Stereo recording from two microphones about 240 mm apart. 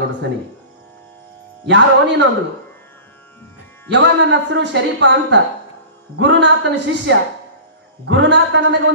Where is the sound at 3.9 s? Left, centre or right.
Right.